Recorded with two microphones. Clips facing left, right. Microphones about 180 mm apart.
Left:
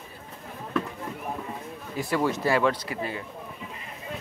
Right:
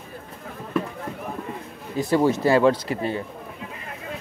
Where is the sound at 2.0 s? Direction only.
25° right (ahead or behind).